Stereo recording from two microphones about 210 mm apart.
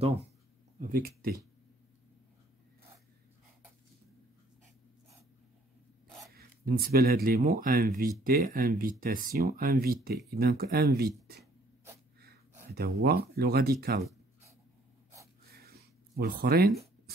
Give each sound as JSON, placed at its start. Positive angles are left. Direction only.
{"t": 0.7, "sound": "speech", "side_deg": -40}
{"t": 6.3, "sound": "speech", "side_deg": -45}
{"t": 12.7, "sound": "speech", "side_deg": -50}
{"t": 16.2, "sound": "speech", "side_deg": -45}